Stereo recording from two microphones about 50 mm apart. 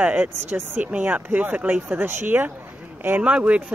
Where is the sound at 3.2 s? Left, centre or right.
Right.